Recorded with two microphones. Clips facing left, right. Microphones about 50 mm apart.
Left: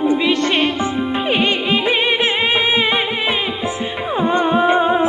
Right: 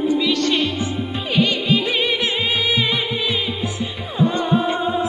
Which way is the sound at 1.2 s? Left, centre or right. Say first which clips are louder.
Even; left.